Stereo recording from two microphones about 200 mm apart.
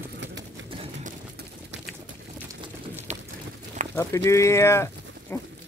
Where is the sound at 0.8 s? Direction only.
40° right (ahead or behind).